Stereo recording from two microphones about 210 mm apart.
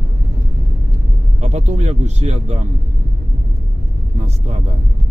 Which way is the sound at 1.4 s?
30° right (ahead or behind).